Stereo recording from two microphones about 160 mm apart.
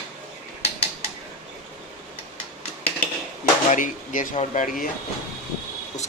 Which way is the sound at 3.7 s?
55° left (ahead or behind).